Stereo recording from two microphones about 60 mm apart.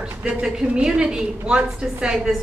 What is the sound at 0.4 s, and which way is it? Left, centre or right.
A woman's voice, centre.